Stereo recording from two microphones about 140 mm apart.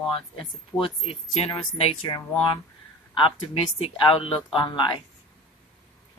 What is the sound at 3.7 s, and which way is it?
Speech, 40° left (ahead or behind).